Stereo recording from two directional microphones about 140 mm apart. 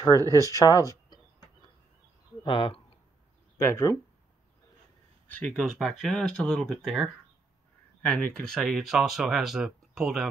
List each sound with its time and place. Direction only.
0.2 s speech: 25° right (ahead or behind)
0.6 s speech: 25° left (ahead or behind)
2.4 s speech: 35° left (ahead or behind)
3.5 s speech: 20° left (ahead or behind)
5.6 s speech: centre (ahead or behind)